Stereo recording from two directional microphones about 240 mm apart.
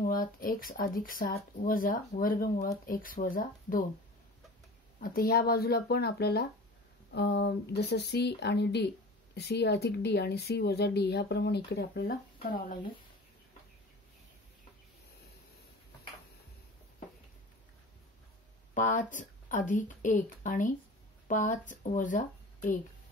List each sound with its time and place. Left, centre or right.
0.0 s speech: left
5.0 s speech: left
18.8 s speech: left